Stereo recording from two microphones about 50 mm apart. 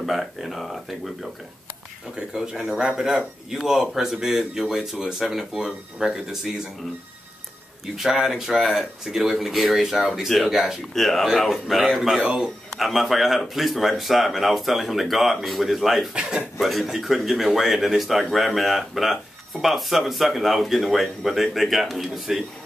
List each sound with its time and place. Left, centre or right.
0.0 s speech: centre
7.8 s speech: centre
10.5 s speech: centre
11.0 s speech: centre
12.7 s speech: centre
16.2 s speech: centre
16.5 s speech: centre